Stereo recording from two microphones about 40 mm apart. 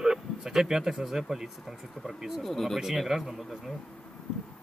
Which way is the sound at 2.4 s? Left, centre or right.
Centre.